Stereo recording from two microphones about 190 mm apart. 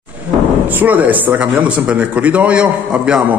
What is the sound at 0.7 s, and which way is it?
Speech, 10° right (ahead or behind).